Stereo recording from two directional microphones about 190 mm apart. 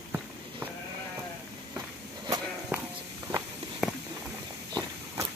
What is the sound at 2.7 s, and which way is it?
Walk, 5° right (ahead or behind).